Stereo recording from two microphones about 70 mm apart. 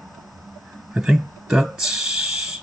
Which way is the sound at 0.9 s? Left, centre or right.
Centre.